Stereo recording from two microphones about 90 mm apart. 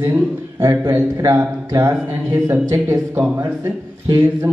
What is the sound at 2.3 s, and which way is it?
A man's voice, 25° right (ahead or behind).